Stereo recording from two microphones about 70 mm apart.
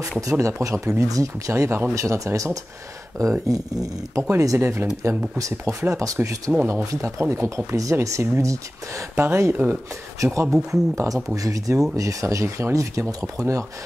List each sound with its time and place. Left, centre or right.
0.3 s speech: right
4.4 s speech: right
6.5 s speech: centre
6.8 s speech: right
9.2 s speech: right
10.2 s speech: right